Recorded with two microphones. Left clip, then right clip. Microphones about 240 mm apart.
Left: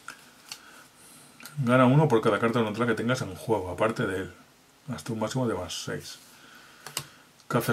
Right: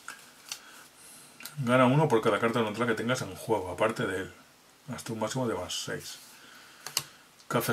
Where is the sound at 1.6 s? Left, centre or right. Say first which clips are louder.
Left 2 dB; centre.